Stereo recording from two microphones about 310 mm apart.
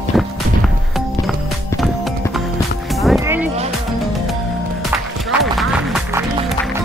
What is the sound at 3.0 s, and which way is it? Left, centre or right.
Music, centre.